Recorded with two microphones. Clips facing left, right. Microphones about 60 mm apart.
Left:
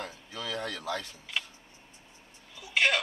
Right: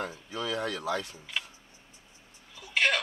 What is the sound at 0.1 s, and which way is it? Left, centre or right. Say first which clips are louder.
Speech: right 4 dB; right.